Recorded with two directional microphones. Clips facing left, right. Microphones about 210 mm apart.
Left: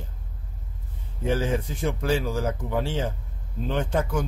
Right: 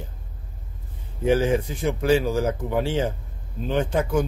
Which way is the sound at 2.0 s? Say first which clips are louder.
Right 7 dB; 10° right (ahead or behind).